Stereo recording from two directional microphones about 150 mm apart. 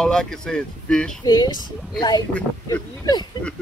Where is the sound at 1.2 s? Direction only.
25° left (ahead or behind).